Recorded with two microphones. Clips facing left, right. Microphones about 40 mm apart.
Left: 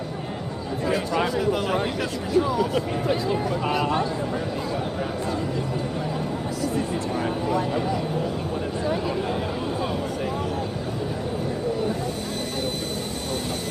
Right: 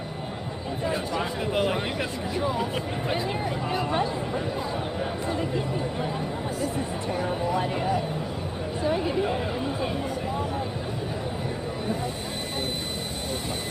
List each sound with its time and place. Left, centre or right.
0.8 s speech: left
1.3 s speech: right